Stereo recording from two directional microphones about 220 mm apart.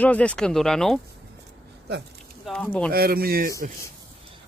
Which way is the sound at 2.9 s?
45° right (ahead or behind).